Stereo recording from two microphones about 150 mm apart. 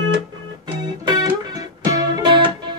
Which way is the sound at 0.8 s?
30° right (ahead or behind).